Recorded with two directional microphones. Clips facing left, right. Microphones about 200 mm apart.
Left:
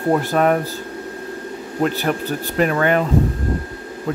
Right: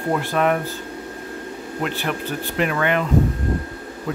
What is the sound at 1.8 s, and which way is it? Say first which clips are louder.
Speech: left 6 dB; 40° left (ahead or behind).